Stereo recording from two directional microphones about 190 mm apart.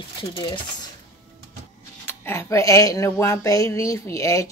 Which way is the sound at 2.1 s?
15° left (ahead or behind).